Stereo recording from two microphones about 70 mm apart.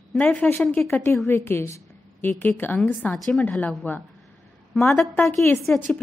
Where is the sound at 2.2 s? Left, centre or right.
Left.